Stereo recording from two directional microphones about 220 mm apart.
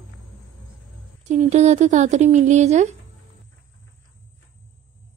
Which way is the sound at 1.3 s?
30° right (ahead or behind).